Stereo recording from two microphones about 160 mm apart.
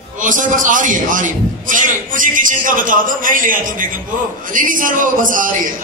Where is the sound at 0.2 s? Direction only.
55° right (ahead or behind).